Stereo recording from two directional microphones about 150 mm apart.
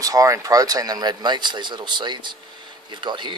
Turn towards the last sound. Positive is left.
turn(degrees=-30)  # may be behind; listen again after turning